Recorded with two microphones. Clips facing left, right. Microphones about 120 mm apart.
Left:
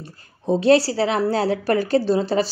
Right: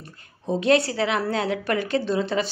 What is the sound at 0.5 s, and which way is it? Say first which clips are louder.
A woman's voice: left 4 dB; 35° left (ahead or behind).